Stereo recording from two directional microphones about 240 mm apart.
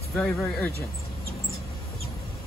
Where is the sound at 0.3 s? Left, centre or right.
Centre.